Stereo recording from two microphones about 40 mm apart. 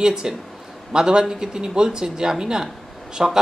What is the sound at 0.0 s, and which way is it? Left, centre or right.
Speech, centre.